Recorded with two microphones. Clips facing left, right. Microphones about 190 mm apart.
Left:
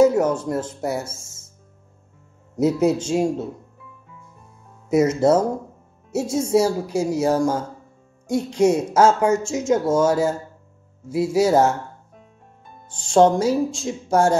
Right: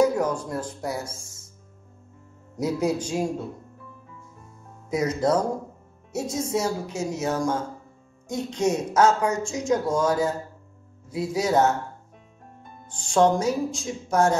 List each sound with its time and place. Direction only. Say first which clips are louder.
0.0 s a sound: left 5 dB; 25° left (ahead or behind)
0.5 s speech: left 6 dB; 25° left (ahead or behind)
2.5 s speech: left 6 dB; 25° left (ahead or behind)
4.8 s speech: left 7 dB; 25° left (ahead or behind)
12.8 s speech: left 5 dB; 30° left (ahead or behind)